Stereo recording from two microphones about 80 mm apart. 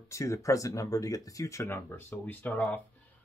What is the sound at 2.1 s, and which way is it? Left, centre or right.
Speech, left.